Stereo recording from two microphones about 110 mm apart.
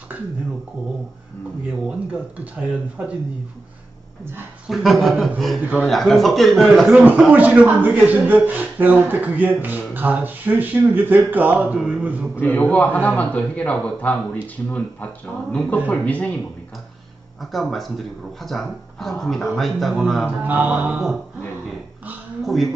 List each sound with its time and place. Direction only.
1.9 s speech: 15° right (ahead or behind)
4.6 s speech: centre (ahead or behind)
5.6 s speech: 10° right (ahead or behind)
5.9 s speech: centre (ahead or behind)
7.3 s speech: 15° right (ahead or behind)
12.4 s a man's voice: 15° left (ahead or behind)
17.4 s speech: centre (ahead or behind)
20.2 s speech: 15° right (ahead or behind)
22.4 s speech: centre (ahead or behind)